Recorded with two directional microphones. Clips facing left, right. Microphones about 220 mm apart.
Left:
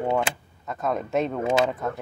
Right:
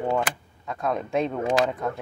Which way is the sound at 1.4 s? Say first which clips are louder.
Left 1 dB; 25° left (ahead or behind).